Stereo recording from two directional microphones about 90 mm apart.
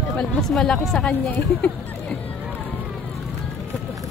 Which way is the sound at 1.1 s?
20° left (ahead or behind).